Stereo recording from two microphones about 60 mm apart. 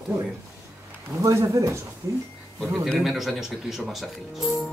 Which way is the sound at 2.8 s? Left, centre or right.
Centre.